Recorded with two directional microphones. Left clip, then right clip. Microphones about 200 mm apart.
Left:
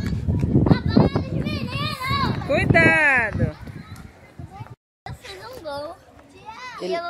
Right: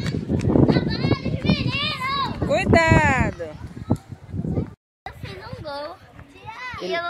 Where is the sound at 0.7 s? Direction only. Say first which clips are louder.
Left 2 dB; 50° left (ahead or behind).